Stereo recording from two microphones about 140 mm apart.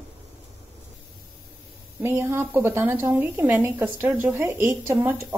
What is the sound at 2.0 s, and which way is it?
A woman's voice, 15° right (ahead or behind).